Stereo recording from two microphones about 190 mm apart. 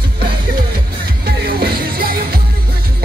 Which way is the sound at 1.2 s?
55° right (ahead or behind).